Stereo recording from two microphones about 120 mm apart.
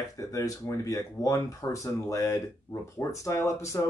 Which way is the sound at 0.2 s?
25° left (ahead or behind).